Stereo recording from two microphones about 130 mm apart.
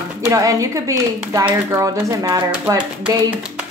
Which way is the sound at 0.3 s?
25° right (ahead or behind).